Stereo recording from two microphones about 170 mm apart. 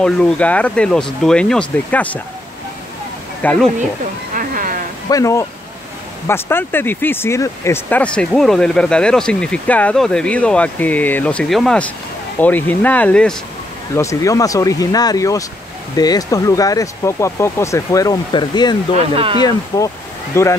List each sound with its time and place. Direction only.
0.0 s speech: 5° left (ahead or behind)
3.4 s speech: 10° left (ahead or behind)
4.4 s a sound: 55° right (ahead or behind)
5.1 s speech: 20° left (ahead or behind)
13.9 s speech: 20° left (ahead or behind)
18.9 s speech: 35° right (ahead or behind)
19.7 s speech: 20° left (ahead or behind)